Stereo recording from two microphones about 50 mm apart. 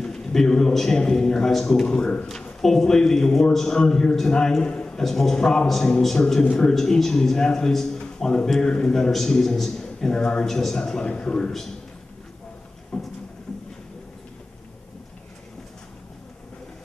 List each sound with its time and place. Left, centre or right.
0.0 s a man's voice: centre
12.9 s a man's voice: centre